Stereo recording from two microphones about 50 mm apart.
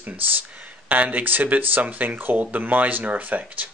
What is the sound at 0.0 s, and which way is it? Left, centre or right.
Speech, right.